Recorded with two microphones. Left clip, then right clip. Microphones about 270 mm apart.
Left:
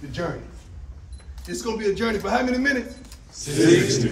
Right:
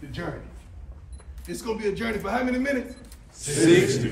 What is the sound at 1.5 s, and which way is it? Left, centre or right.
Speech, left.